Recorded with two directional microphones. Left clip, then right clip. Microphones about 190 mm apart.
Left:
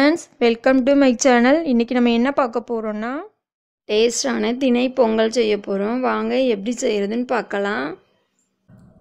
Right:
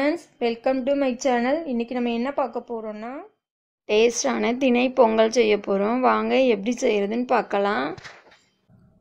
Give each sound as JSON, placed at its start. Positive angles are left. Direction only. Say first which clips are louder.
{"t": 0.0, "sound": "a woman's voice", "louder": "left 7 dB", "side_deg": 30}